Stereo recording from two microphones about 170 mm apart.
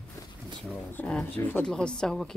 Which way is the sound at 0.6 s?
5° left (ahead or behind).